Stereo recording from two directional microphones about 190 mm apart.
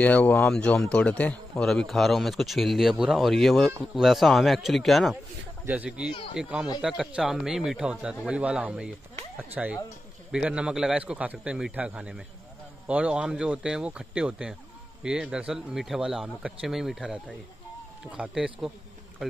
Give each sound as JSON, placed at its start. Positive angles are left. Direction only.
{"t": 0.0, "sound": "a man's voice", "side_deg": 10}